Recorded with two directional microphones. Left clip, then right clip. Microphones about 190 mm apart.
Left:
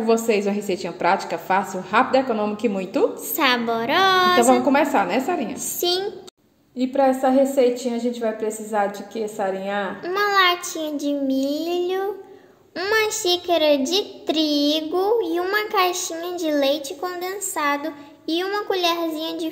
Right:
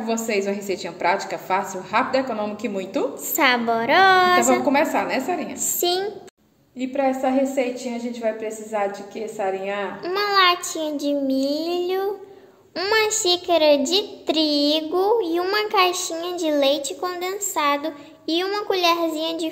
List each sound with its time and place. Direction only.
0.0 s a woman's voice: 35° left (ahead or behind)
3.3 s a child's voice: 5° right (ahead or behind)
4.6 s a woman's voice: 40° left (ahead or behind)
5.8 s a woman's voice: 5° right (ahead or behind)
6.8 s a woman's voice: 45° left (ahead or behind)
10.0 s a child's voice: centre (ahead or behind)